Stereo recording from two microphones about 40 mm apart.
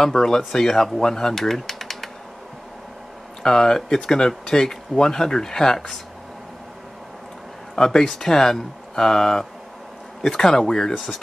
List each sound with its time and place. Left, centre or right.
0.0 s speech: centre
3.4 s speech: centre
7.7 s speech: centre